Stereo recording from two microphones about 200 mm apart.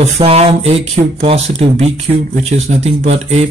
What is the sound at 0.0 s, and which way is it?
Speech, 30° right (ahead or behind).